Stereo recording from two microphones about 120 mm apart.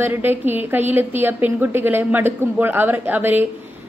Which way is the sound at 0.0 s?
15° right (ahead or behind).